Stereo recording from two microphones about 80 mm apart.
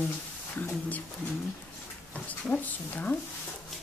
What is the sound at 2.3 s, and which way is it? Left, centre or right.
Speech, centre.